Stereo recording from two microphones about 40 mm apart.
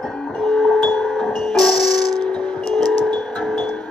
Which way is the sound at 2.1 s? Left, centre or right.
Left.